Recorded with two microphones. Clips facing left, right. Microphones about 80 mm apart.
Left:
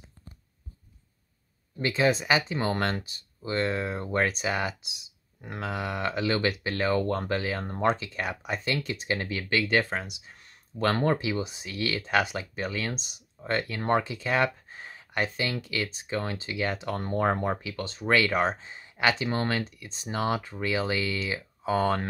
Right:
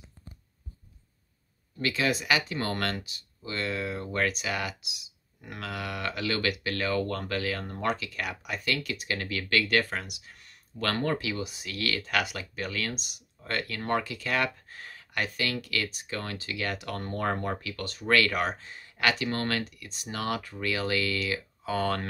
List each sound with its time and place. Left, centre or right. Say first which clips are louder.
1.8 s speech: left 4 dB; left
3.0 s speech: left 2 dB; left